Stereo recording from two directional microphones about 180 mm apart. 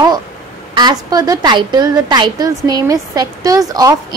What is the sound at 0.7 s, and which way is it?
A woman's voice, 20° right (ahead or behind).